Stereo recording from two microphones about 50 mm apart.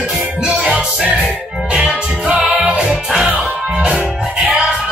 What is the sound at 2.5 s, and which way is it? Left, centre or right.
Music, right.